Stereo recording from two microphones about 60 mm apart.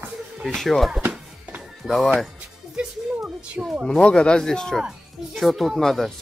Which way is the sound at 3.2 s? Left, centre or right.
Centre.